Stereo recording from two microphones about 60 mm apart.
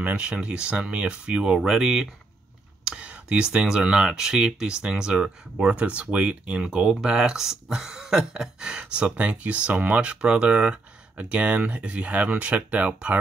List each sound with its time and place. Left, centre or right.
0.0 s speech: right
2.8 s a sound: centre
3.5 s speech: centre